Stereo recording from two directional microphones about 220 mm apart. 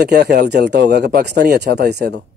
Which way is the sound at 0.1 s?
50° right (ahead or behind).